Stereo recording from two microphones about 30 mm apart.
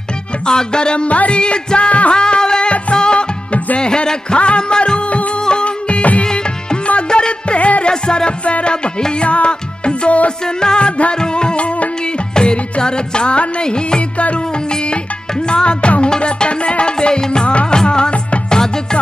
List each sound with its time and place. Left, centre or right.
0.5 s music: left
1.0 s speech: left
1.4 s music: left
2.1 s music: left
7.9 s music: left
10.4 s music: left
12.4 s music: left
14.1 s music: left
15.4 s music: left
17.6 s music of bollywood: left
18.5 s music: left